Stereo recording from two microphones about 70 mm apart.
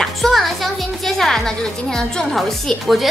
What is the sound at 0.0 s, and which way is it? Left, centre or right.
Speech, centre.